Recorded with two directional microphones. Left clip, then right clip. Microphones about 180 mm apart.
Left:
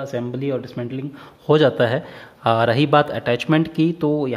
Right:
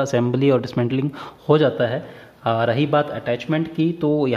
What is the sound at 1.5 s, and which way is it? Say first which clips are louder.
Speech: left 2 dB; 10° left (ahead or behind).